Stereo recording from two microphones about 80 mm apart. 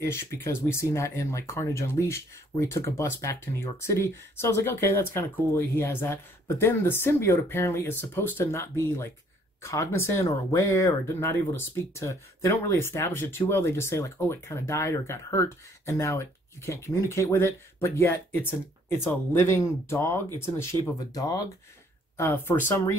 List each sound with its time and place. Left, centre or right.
0.0 s speech: left
21.1 s speech: left
22.1 s speech: left